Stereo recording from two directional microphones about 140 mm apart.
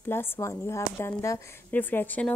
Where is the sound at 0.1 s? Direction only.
20° left (ahead or behind).